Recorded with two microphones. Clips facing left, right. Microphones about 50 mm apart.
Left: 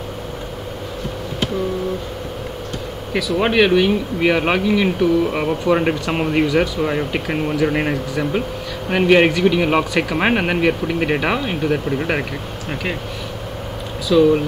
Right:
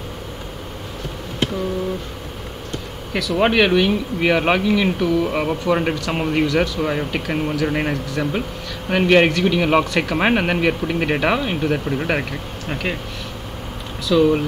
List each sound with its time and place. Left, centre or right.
3.1 s speech: centre
3.3 s speech: centre
5.9 s speech: centre
14.1 s speech: centre